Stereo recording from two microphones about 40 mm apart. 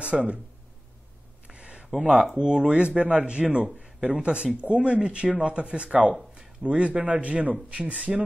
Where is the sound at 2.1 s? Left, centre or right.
Right.